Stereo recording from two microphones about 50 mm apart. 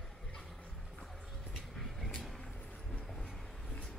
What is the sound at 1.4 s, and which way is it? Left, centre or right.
Vehicle, centre.